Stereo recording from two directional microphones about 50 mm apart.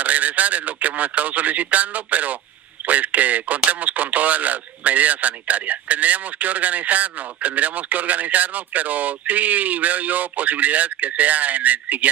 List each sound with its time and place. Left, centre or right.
0.0 s speech: right